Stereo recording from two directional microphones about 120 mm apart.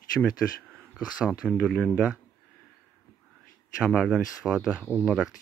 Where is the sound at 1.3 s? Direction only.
5° left (ahead or behind).